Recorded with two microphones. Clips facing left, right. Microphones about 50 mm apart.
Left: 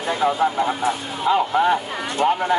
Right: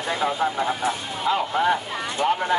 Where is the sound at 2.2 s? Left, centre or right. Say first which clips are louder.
Left 3 dB; left.